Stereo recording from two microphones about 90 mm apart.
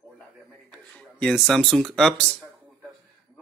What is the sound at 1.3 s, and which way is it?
Speech, 5° left (ahead or behind).